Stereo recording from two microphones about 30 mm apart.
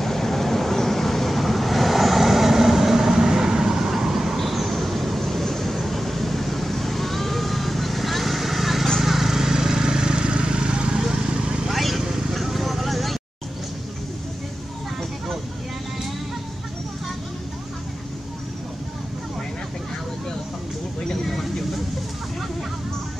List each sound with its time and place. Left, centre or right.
0.0 s vehicle: centre; by 11.0 s right
11.0 s a sound: centre
11.7 s vehicle: centre
12.0 s vehicle: centre
21.2 s vehicle: centre